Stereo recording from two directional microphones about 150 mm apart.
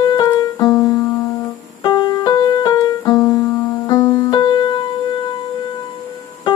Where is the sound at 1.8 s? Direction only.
25° left (ahead or behind).